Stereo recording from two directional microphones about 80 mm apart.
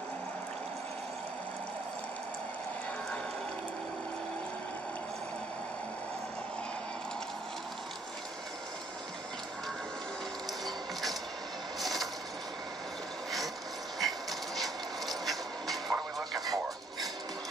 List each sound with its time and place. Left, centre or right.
10.6 s mechanisms: centre
11.8 s vehicle: centre
13.9 s a sound: centre